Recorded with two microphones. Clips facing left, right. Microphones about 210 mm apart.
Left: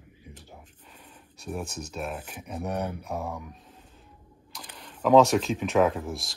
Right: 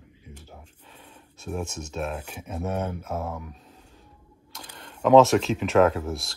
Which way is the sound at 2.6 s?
15° left (ahead or behind).